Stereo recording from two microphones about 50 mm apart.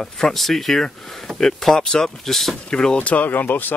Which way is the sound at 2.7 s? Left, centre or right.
Centre.